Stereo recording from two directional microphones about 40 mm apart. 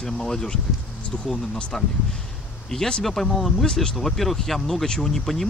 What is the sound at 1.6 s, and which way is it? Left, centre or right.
Speech, left.